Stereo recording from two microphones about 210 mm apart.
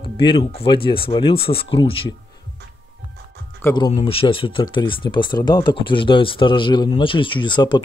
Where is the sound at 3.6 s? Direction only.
20° left (ahead or behind).